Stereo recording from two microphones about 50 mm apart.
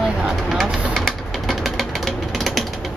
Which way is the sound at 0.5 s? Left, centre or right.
Centre.